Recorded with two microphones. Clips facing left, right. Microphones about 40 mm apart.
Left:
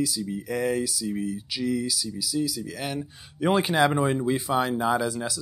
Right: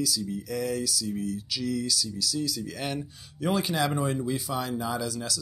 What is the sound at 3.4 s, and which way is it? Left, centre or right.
Speech, left.